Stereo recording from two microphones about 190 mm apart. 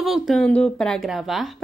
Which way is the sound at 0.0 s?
Centre (ahead or behind).